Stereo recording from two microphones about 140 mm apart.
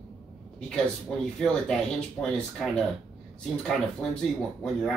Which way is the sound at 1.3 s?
5° left (ahead or behind).